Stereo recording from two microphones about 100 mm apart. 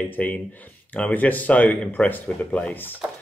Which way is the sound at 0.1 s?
15° left (ahead or behind).